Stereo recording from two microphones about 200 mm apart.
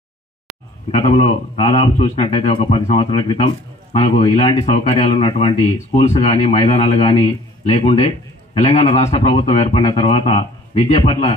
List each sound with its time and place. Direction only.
0.9 s speech: 30° left (ahead or behind)